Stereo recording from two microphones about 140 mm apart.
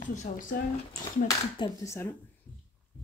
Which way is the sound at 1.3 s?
20° left (ahead or behind).